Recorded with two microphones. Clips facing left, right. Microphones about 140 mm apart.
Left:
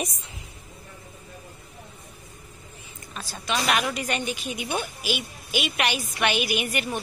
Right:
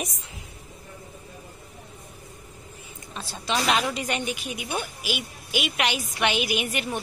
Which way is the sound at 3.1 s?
25° right (ahead or behind).